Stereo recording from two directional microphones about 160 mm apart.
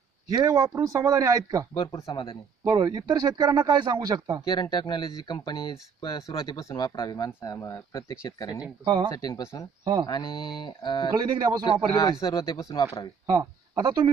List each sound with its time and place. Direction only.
0.3 s speech: 25° right (ahead or behind)
1.7 s speech: 20° left (ahead or behind)
2.6 s speech: 25° right (ahead or behind)
4.5 s speech: 25° left (ahead or behind)
8.8 s speech: 25° right (ahead or behind)
9.1 s speech: 20° left (ahead or behind)
11.1 s speech: 25° right (ahead or behind)
11.9 s speech: 20° left (ahead or behind)
13.3 s speech: 25° right (ahead or behind)